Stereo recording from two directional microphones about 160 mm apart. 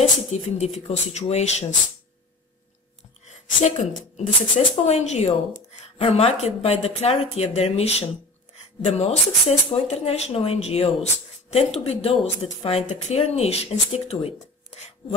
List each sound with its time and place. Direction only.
0.3 s speech: 40° left (ahead or behind)
3.3 s a sound: 45° left (ahead or behind)
4.6 s speech: 45° left (ahead or behind)